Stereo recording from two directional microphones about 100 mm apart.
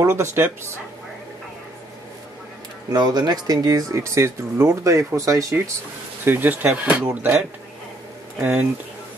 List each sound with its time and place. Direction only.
0.0 s speech: 25° right (ahead or behind)
2.9 s speech: 45° right (ahead or behind)
6.2 s speech: 20° right (ahead or behind)